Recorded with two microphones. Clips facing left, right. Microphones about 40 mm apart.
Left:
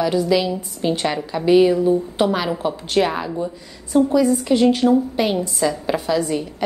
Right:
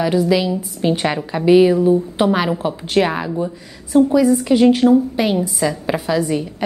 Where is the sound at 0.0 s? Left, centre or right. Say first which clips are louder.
Right 2 dB; centre.